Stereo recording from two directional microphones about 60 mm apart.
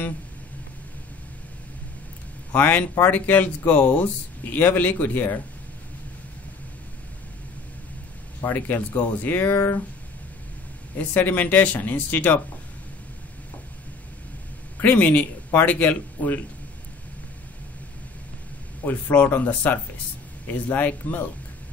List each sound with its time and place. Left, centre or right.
2.5 s speech: left
8.5 s speech: left
11.0 s speech: left
14.8 s speech: left
18.9 s speech: left